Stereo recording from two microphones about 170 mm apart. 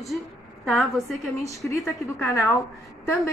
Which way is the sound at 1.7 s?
20° left (ahead or behind).